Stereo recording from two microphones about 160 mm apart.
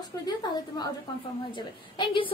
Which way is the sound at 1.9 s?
30° left (ahead or behind).